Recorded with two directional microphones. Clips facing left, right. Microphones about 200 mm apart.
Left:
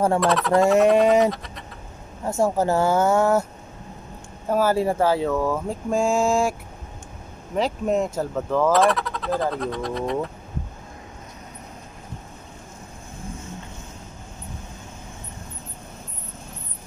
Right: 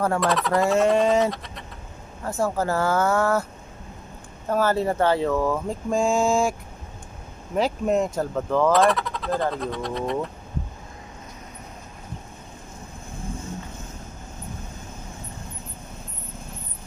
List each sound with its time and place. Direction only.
0.2 s speech: centre (ahead or behind)
0.6 s a sound: 15° left (ahead or behind)
1.3 s speech: centre (ahead or behind)
2.4 s speech: 20° left (ahead or behind)
4.5 s speech: 10° left (ahead or behind)
7.5 s speech: centre (ahead or behind)